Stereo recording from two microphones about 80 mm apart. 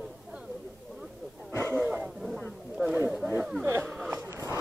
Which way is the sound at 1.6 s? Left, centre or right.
Centre.